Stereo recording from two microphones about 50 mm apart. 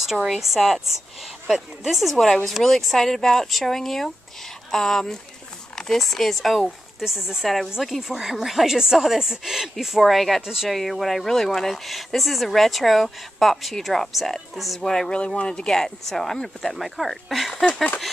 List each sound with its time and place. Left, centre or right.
0.1 s speech: centre
10.4 s speech: centre
10.7 s speech: centre
14.9 s speech: centre